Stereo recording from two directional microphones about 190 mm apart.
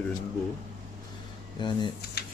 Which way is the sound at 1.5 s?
25° left (ahead or behind).